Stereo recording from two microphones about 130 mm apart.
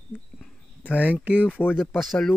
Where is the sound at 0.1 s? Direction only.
10° left (ahead or behind).